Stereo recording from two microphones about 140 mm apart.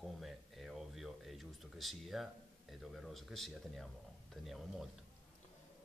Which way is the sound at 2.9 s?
Centre (ahead or behind).